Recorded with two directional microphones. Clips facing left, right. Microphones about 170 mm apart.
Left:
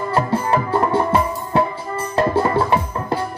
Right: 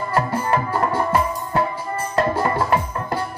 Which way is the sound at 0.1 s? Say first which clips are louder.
Left 2 dB; 25° left (ahead or behind).